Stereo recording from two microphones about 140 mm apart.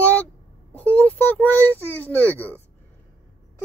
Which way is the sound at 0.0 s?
10° left (ahead or behind).